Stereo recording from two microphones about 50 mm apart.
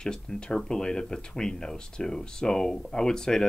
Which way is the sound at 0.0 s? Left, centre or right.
Centre.